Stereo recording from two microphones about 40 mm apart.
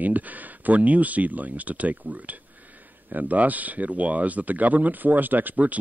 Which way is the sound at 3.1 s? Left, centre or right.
Right.